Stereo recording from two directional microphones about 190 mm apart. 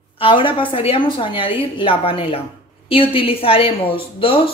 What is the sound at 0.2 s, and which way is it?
Speech, 25° left (ahead or behind).